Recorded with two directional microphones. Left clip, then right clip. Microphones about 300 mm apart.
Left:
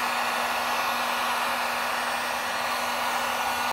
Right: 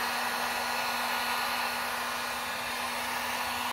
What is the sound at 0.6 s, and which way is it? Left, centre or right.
Hair dryer, centre.